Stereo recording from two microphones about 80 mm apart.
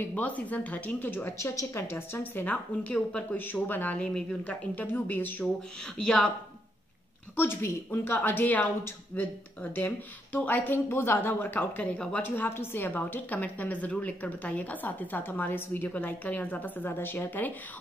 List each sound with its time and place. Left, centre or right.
0.1 s speech: centre
1.4 s speech: left; by 4.6 s centre
4.7 s speech: left
5.9 s a woman's voice: centre
7.3 s speech: left